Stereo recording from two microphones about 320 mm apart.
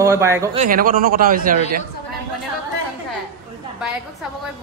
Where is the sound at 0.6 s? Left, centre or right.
Right.